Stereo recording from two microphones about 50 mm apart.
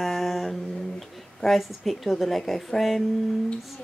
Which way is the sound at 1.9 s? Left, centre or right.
Centre.